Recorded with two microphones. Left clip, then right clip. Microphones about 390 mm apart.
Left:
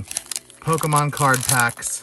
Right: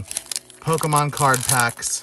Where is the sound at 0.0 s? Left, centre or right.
Centre.